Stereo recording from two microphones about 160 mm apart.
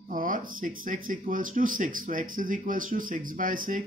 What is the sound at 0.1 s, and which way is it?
Speech, 60° right (ahead or behind).